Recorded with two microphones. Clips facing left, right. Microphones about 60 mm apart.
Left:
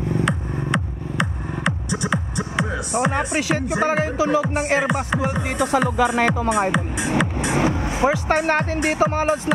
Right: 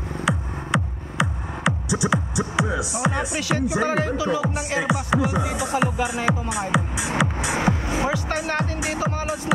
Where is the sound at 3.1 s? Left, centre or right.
Left.